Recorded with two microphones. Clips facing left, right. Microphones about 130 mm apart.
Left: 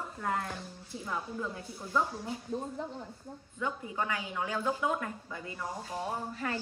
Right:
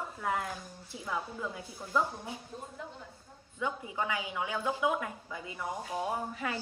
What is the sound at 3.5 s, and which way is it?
Speech, 10° right (ahead or behind).